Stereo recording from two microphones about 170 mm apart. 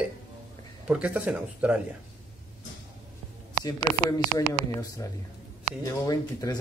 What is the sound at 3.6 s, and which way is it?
Speech, 25° left (ahead or behind).